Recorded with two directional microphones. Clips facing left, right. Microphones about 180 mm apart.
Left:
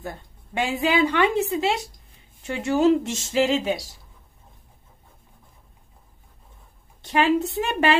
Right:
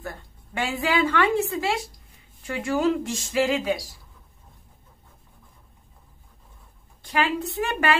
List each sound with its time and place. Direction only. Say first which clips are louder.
0.0 s a woman's voice: left 2 dB; 20° left (ahead or behind)
7.0 s a woman's voice: left 5 dB; 25° left (ahead or behind)